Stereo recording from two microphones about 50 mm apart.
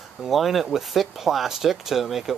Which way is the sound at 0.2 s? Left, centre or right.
Centre.